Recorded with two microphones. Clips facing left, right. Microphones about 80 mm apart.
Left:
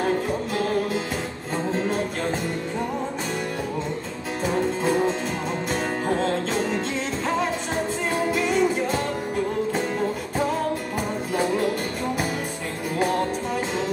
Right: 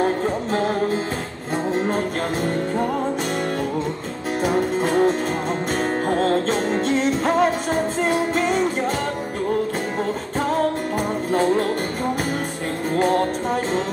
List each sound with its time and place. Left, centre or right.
0.0 s music: right
4.5 s music: right
12.9 s music: right